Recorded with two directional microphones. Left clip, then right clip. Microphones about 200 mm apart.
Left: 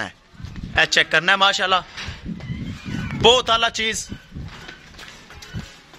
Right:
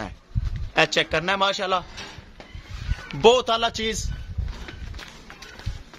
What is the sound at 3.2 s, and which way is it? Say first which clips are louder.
Speech: left 2 dB; centre (ahead or behind).